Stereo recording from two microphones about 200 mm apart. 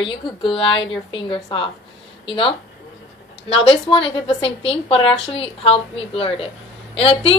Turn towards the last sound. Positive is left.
turn(degrees=30)  # may be behind; listen again after turning